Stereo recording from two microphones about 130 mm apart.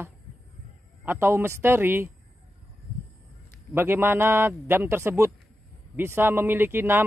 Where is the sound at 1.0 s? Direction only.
15° right (ahead or behind).